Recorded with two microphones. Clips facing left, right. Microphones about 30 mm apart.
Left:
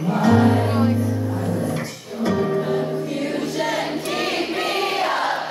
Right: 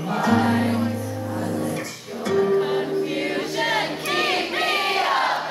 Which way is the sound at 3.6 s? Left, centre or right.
Right.